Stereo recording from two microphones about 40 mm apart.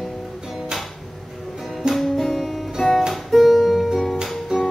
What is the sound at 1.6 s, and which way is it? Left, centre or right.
Music, centre.